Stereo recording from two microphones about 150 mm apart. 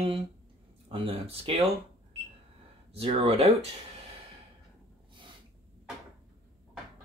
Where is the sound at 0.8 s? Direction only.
40° right (ahead or behind).